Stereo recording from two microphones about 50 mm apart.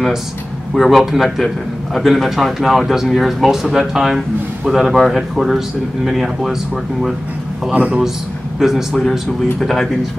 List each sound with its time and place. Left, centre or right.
0.7 s speech: centre
7.7 s a man's voice: right
8.5 s speech: centre